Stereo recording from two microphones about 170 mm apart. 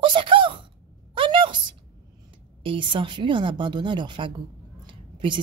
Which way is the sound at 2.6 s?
30° right (ahead or behind).